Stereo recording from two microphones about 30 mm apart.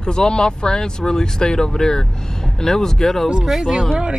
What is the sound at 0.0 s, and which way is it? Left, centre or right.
Speech, left.